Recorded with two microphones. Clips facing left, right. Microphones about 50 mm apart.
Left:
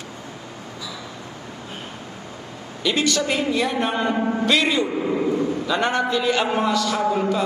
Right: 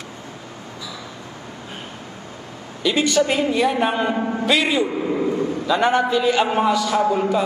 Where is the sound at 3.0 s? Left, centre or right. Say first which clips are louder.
Right 4 dB; centre.